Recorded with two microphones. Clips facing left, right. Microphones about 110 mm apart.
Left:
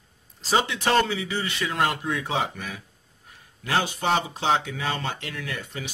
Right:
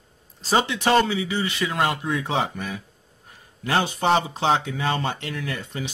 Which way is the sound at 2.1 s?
30° right (ahead or behind).